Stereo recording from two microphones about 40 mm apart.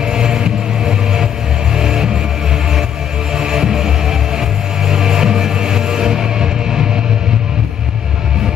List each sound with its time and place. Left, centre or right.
0.0 s vehicle: centre
1.8 s music: centre
3.3 s music: centre